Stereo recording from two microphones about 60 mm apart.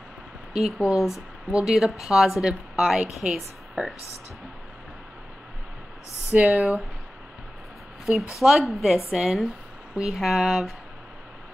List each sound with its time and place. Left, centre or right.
0.5 s speech: centre
6.4 s speech: centre
8.1 s speech: centre